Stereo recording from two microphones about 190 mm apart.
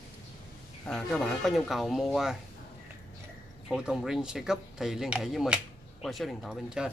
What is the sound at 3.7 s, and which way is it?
Speech, 5° right (ahead or behind).